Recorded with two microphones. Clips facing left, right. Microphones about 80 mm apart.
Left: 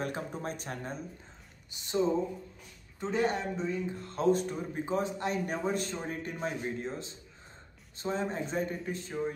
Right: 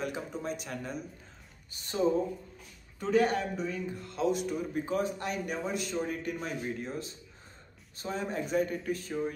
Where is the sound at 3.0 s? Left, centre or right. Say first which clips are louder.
Right 3 dB; left.